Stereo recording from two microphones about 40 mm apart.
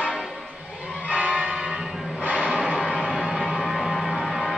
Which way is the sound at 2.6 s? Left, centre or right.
Centre.